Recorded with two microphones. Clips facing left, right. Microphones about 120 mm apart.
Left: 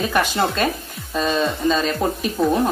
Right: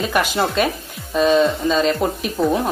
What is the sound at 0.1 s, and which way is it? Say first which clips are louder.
Speech: right 1 dB; 15° right (ahead or behind).